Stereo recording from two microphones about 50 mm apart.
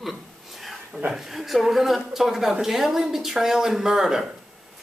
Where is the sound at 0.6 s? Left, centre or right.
Centre.